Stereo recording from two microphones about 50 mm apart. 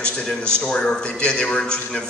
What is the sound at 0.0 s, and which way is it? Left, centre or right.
A man's voice, centre.